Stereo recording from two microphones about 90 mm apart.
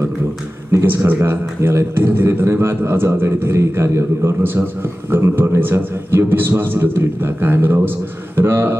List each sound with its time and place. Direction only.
0.7 s a man's voice: 30° right (ahead or behind)